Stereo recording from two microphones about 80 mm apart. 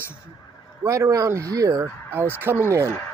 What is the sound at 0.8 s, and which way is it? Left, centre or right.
Speech, right.